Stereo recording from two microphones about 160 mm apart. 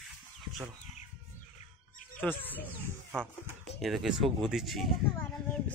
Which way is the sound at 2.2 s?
10° left (ahead or behind).